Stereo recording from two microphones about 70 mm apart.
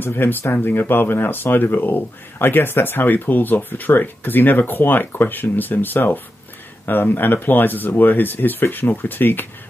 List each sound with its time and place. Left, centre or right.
0.0 s speech: left